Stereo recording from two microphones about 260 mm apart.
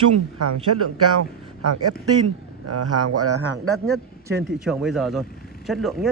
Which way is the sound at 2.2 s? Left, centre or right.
Right.